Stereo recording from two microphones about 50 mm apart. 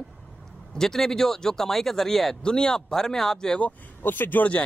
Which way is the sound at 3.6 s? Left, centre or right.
Left.